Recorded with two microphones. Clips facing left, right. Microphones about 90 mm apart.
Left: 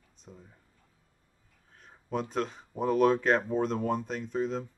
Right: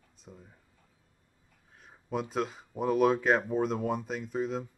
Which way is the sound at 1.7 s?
5° right (ahead or behind).